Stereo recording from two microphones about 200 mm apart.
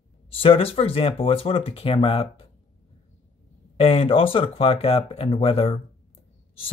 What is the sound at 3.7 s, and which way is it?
Speech, 30° left (ahead or behind).